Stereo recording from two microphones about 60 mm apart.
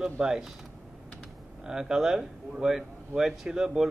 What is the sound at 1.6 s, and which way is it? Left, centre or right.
Speech, centre.